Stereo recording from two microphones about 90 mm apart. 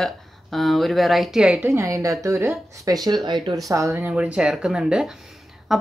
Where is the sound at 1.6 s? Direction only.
30° right (ahead or behind).